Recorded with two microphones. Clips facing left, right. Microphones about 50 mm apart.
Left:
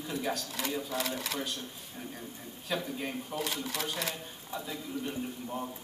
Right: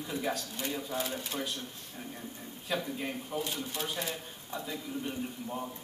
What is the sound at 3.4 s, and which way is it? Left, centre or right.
Speech, left.